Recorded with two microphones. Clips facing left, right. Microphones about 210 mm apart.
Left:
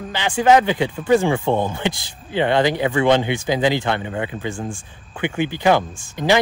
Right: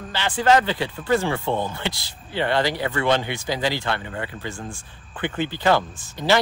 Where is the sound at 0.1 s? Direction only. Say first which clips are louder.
Left 4 dB; 15° left (ahead or behind).